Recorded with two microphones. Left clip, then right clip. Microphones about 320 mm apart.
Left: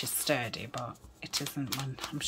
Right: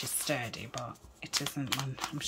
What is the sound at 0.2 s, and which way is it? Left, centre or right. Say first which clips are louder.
Speech: left 4 dB; centre.